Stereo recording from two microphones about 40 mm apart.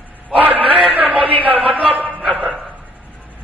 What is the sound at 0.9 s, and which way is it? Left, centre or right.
Speech, right.